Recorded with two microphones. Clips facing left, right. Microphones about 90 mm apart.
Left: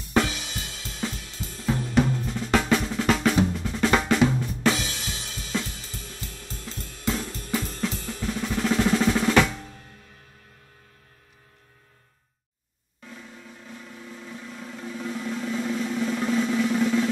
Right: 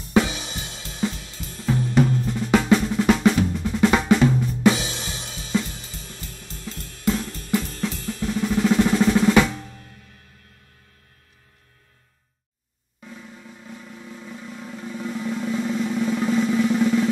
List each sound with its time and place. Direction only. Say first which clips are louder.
0.3 s music: right 2 dB; 20° right (ahead or behind)
1.7 s cymbal: right 3 dB; centre (ahead or behind)
2.1 s drum: right 4 dB; 5° right (ahead or behind)
4.7 s drum kit: right 2 dB; 20° right (ahead or behind)
7.8 s drum: right 2 dB; centre (ahead or behind)
13.0 s vehicle: right 2 dB; 5° right (ahead or behind)